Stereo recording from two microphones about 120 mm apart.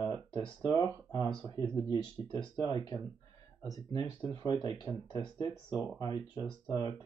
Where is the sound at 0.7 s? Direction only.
30° left (ahead or behind).